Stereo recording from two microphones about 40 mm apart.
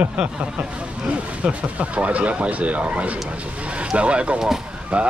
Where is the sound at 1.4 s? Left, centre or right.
Right.